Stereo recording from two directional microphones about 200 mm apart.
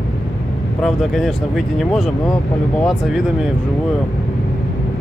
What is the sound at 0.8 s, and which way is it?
Speech, centre (ahead or behind).